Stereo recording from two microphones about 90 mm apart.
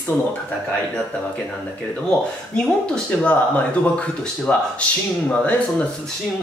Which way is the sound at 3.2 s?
15° left (ahead or behind).